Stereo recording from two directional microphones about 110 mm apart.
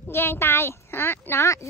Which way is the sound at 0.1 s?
20° left (ahead or behind).